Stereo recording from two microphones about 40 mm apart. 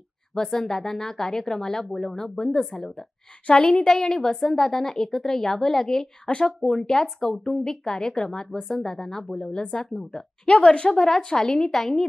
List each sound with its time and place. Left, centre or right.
0.3 s speech: centre
3.4 s a woman's voice: left
3.9 s a woman's voice: centre